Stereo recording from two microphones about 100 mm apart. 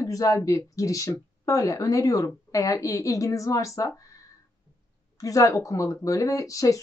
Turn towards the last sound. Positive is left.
turn(degrees=35)  # may be behind; listen again after turning